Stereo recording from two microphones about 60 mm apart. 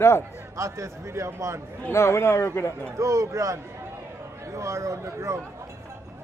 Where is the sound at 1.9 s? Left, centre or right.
Left.